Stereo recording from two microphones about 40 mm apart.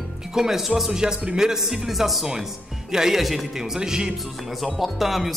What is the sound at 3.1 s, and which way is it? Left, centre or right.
Speech, centre.